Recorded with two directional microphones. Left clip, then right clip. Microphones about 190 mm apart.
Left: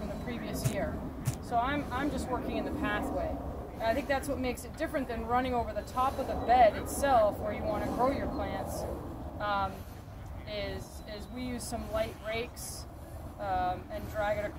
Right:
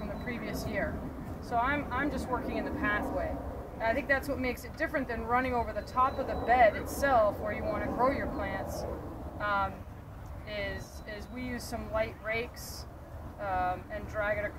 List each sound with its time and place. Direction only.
0.2 s a sound: 5° left (ahead or behind)
1.5 s speech: 5° right (ahead or behind)
11.7 s speech: centre (ahead or behind)
13.4 s speech: centre (ahead or behind)